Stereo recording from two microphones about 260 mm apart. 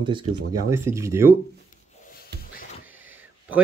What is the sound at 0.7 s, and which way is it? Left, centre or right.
Speech, centre.